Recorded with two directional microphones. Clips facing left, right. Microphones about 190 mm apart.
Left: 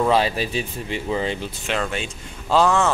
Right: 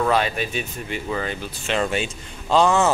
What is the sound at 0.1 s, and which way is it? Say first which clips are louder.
Speech: left 2 dB; 30° left (ahead or behind).